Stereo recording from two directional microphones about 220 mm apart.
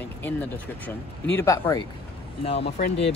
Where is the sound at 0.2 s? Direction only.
5° left (ahead or behind).